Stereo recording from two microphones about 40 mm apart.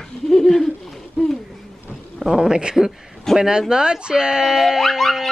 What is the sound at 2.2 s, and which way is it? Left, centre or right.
Speech, centre.